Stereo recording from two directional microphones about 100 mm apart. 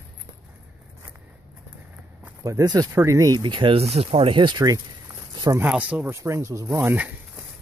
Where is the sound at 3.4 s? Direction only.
55° right (ahead or behind).